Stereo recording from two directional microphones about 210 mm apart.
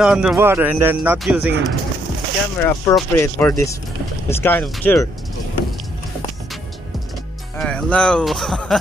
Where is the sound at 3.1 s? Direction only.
10° left (ahead or behind).